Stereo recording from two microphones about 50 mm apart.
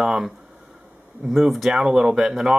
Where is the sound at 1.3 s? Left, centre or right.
Centre.